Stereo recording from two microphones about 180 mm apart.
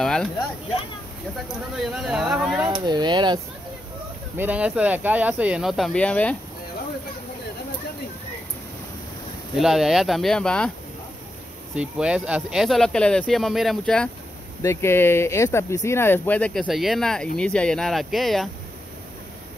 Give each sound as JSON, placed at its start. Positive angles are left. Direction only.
{"t": 0.0, "sound": "speech", "side_deg": 0}
{"t": 1.8, "sound": "speech", "side_deg": 0}
{"t": 2.7, "sound": "speech", "side_deg": -25}
{"t": 4.4, "sound": "speech", "side_deg": -10}
{"t": 9.6, "sound": "speech", "side_deg": 0}
{"t": 11.7, "sound": "speech", "side_deg": -5}
{"t": 14.6, "sound": "speech", "side_deg": 15}